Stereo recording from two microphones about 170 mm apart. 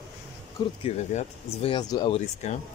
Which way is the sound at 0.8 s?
45° left (ahead or behind).